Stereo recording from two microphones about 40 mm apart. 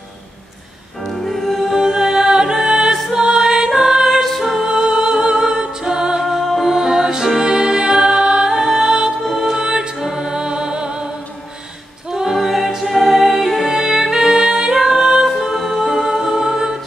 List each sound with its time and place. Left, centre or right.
1.0 s music: centre
1.8 s music: centre
4.2 s music: centre
4.6 s music: centre
6.2 s music: centre; by 11.1 s right
12.1 s music: centre